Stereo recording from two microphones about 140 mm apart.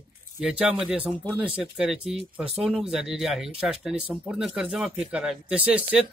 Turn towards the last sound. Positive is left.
turn(degrees=-10)  # may be behind; listen again after turning